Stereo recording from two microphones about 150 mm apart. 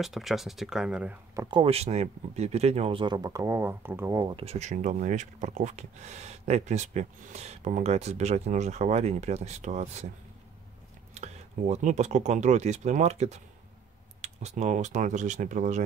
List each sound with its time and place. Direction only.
0.0 s speech: centre (ahead or behind)
1.5 s speech: 40° right (ahead or behind); by 4.4 s 20° right (ahead or behind)
4.4 s speech: 45° right (ahead or behind)
11.1 s speech: 50° right (ahead or behind)